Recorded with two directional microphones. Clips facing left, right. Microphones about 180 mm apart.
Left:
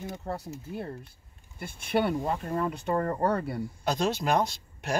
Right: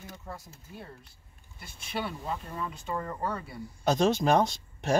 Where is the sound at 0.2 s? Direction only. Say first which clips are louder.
Left 9 dB; 65° left (ahead or behind).